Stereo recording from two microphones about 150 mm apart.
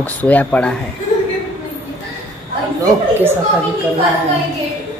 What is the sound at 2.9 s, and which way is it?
Speech, 15° right (ahead or behind).